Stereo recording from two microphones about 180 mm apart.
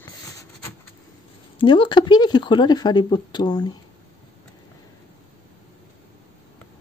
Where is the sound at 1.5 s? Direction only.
25° left (ahead or behind).